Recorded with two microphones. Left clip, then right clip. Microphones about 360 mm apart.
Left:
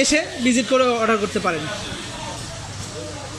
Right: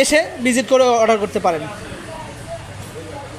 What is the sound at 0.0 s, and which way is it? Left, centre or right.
Speech, centre.